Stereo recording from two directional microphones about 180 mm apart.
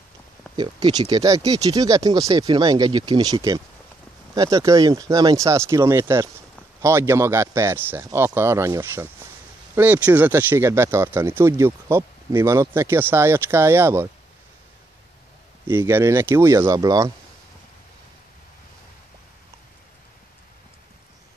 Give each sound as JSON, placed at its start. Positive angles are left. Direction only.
{"t": 0.6, "sound": "speech", "side_deg": -25}
{"t": 15.6, "sound": "speech", "side_deg": -15}